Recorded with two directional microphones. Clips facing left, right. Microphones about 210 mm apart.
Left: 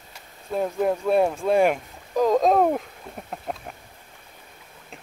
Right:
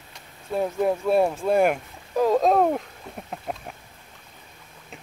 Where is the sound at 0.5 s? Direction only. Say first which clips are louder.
Even; centre (ahead or behind).